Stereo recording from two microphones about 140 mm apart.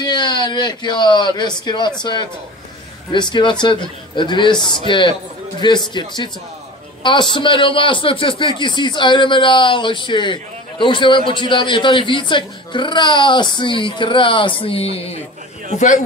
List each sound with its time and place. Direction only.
0.0 s a man's voice: 30° left (ahead or behind)